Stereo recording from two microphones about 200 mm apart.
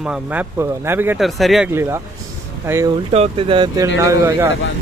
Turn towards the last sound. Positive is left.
turn(degrees=-15)  # may be behind; listen again after turning